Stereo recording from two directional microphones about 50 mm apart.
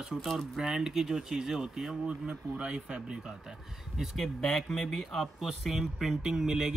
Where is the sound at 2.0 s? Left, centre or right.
Right.